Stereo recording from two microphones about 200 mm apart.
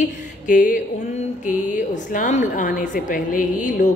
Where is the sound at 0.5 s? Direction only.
40° left (ahead or behind).